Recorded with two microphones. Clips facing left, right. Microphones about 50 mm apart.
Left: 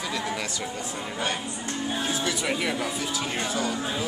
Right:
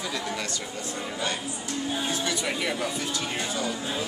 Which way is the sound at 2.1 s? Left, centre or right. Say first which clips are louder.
Left 1 dB; centre.